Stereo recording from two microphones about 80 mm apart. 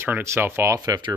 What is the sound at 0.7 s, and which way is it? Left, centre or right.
Speech, right.